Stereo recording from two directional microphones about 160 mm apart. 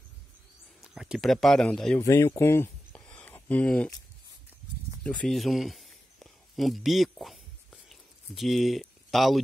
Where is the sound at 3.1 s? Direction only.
5° left (ahead or behind).